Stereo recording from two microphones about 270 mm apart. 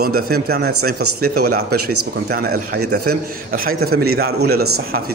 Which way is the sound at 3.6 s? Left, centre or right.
Right.